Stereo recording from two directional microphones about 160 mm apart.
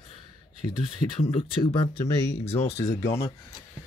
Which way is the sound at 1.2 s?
35° left (ahead or behind).